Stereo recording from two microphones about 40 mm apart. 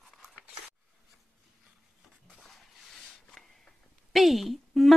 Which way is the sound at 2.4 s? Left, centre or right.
Centre.